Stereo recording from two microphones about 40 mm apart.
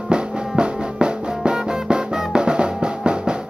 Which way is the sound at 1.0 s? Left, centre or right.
Right.